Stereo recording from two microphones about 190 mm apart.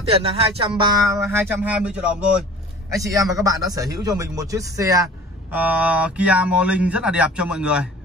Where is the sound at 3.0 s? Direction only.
15° right (ahead or behind).